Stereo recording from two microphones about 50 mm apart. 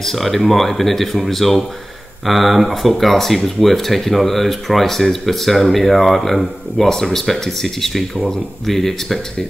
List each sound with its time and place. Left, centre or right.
0.0 s speech: centre